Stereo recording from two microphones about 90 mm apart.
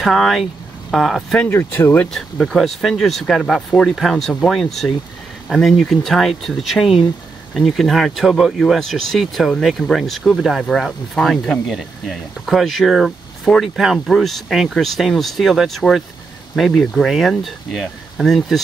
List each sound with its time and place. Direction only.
0.0 s speech: centre (ahead or behind)
1.5 s speech: 25° left (ahead or behind)
2.4 s speech: 5° left (ahead or behind)
11.6 s speech: centre (ahead or behind)